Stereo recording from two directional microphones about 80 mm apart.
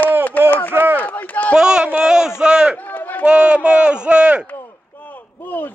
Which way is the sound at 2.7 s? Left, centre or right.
Left.